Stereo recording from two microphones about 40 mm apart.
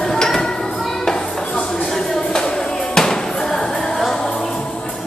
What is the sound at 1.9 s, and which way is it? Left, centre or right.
Music, centre.